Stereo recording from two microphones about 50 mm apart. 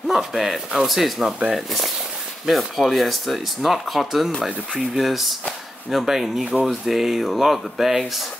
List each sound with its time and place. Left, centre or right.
0.1 s speech: centre